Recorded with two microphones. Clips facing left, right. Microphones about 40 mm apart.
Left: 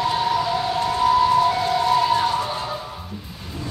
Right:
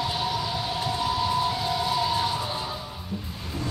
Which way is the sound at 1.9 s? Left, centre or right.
Left.